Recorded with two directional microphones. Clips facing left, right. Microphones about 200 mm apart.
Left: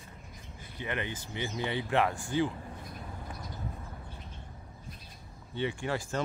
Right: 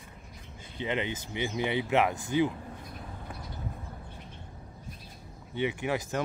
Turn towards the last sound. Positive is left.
turn(degrees=-15)  # may be behind; listen again after turning